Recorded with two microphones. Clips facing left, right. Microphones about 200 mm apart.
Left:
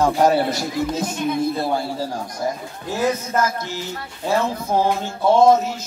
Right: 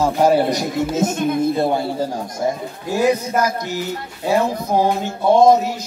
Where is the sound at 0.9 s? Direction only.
45° right (ahead or behind).